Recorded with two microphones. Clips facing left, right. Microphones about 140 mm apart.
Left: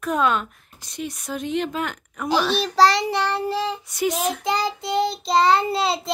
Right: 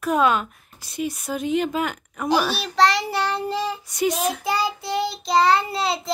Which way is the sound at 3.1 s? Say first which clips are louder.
Left 1 dB; 10° right (ahead or behind).